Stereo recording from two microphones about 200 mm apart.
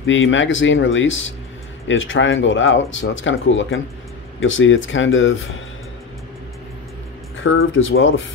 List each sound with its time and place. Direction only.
0.0 s speech: 70° left (ahead or behind)
7.4 s speech: 75° left (ahead or behind)